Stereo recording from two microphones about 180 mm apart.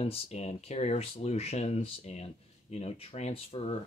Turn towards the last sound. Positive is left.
turn(degrees=35)  # may be behind; listen again after turning